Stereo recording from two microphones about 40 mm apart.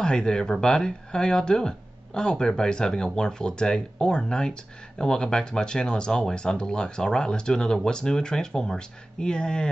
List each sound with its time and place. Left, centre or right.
0.0 s speech: left